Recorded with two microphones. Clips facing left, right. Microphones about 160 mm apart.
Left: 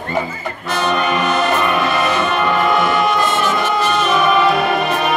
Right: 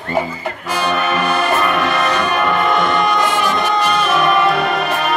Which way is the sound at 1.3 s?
10° right (ahead or behind).